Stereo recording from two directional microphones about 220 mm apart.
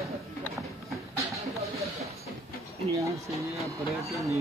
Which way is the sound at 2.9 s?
15° right (ahead or behind).